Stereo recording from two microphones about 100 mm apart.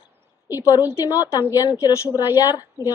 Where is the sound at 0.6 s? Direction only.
40° left (ahead or behind).